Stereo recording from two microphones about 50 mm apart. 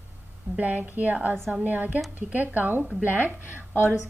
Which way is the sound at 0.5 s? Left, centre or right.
Right.